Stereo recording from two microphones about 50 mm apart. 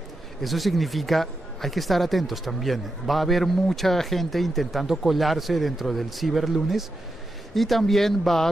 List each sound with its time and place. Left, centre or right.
0.4 s speech: centre